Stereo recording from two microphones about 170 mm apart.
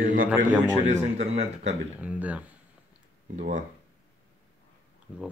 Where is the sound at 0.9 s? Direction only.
40° right (ahead or behind).